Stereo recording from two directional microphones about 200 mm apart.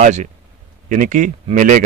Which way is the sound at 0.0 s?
40° right (ahead or behind).